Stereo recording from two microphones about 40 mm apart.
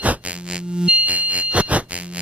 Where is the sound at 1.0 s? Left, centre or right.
Right.